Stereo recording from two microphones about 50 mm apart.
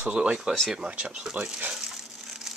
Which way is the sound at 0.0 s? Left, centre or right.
Centre.